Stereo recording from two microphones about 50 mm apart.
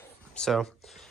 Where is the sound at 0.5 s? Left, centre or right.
Centre.